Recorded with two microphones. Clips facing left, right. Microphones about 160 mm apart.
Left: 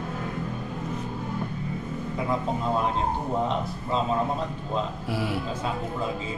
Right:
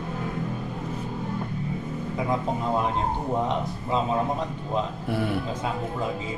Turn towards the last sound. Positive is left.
turn(degrees=-55)  # may be behind; listen again after turning